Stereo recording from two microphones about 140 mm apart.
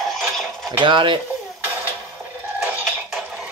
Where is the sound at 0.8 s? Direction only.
35° right (ahead or behind).